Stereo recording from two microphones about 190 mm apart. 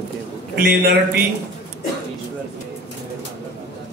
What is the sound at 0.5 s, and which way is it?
Speech, 50° right (ahead or behind).